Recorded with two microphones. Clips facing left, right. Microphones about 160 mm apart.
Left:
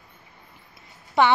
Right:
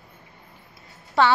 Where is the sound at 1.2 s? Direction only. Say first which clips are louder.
Even; 15° left (ahead or behind).